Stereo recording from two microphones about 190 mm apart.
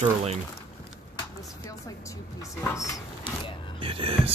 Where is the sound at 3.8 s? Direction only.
30° right (ahead or behind).